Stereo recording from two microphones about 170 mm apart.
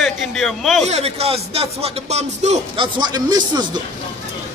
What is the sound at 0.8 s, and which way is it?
Speech, 40° right (ahead or behind).